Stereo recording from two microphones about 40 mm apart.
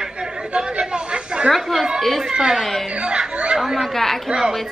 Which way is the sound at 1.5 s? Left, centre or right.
Centre.